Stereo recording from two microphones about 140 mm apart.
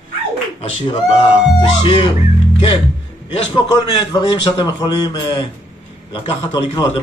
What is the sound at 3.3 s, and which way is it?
A man's voice, 35° left (ahead or behind).